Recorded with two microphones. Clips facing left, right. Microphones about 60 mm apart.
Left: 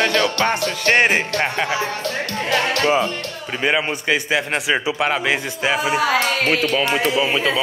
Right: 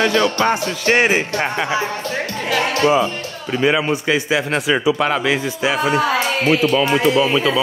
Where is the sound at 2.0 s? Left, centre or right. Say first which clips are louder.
Right 1 dB; left.